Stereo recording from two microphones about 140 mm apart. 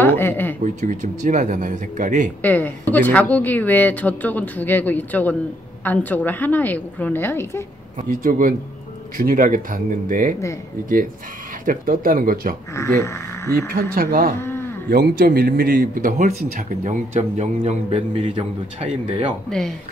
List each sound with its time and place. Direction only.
0.0 s speech: 15° left (ahead or behind)
0.7 s speech: 60° right (ahead or behind)
2.4 s a woman's voice: 10° left (ahead or behind)
8.1 s a man's voice: 85° right
11.6 s speech: 80° right
12.7 s speech: 20° left (ahead or behind)
13.7 s speech: 90° right
14.4 s a sound: 15° left (ahead or behind)
14.9 s a man's voice: 90° right; by 19.3 s 45° right (ahead or behind)